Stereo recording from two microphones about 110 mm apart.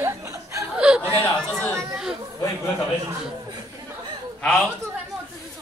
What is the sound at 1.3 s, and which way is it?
Speech, 10° left (ahead or behind).